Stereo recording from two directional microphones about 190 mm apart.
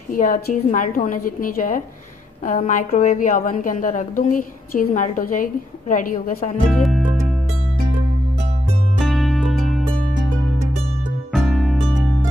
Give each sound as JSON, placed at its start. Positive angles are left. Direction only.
{"t": 0.1, "sound": "a woman's voice", "side_deg": 45}
{"t": 6.7, "sound": "music", "side_deg": 0}
{"t": 9.0, "sound": "music", "side_deg": 0}
{"t": 11.3, "sound": "music", "side_deg": 0}